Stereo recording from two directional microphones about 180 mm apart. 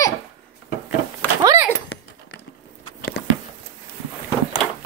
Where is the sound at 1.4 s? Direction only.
20° right (ahead or behind).